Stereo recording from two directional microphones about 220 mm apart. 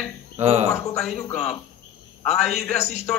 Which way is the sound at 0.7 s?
Centre (ahead or behind).